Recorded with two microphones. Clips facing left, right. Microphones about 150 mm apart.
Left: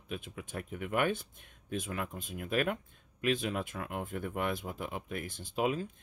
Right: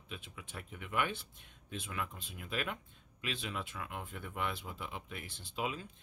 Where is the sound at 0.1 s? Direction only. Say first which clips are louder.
Left 8 dB; 45° left (ahead or behind).